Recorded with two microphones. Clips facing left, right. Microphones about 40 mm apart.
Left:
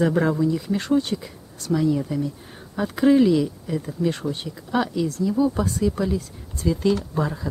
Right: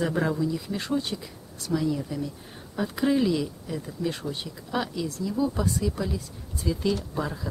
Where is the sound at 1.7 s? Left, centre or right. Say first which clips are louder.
Left 5 dB; centre.